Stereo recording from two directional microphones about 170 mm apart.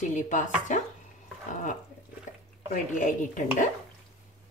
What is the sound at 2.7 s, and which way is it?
A woman's voice, 50° left (ahead or behind).